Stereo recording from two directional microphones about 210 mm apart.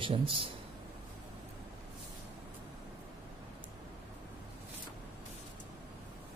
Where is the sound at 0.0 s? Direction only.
25° right (ahead or behind).